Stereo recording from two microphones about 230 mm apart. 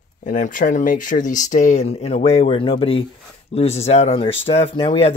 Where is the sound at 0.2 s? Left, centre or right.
Left.